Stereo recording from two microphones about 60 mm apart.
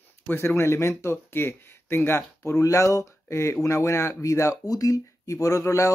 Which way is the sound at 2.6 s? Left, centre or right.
Left.